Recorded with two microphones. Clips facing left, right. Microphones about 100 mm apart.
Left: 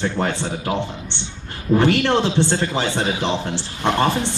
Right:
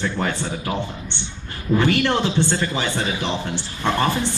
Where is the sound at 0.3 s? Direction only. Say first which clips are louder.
Left 2 dB; 30° left (ahead or behind).